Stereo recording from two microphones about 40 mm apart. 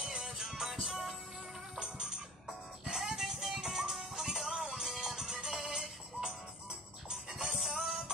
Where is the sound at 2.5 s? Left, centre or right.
Centre.